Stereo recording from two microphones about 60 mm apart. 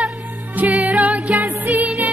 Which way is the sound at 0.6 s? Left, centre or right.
Right.